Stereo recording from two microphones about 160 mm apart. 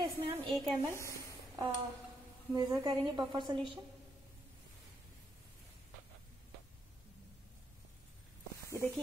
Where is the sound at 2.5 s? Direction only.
25° right (ahead or behind).